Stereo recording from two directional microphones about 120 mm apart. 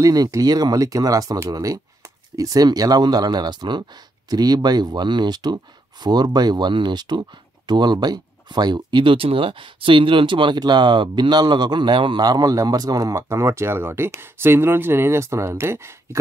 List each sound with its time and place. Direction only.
0.0 s speech: 30° right (ahead or behind)